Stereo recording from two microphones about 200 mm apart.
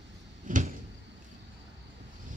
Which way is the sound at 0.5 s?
40° right (ahead or behind).